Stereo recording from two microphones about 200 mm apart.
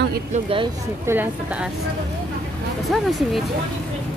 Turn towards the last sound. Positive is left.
turn(degrees=0)  # may be behind; listen again after turning